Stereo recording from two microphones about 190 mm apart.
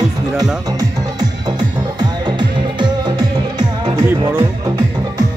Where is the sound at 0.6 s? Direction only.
20° right (ahead or behind).